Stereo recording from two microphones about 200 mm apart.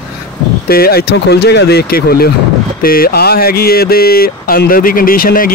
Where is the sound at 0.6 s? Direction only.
50° left (ahead or behind).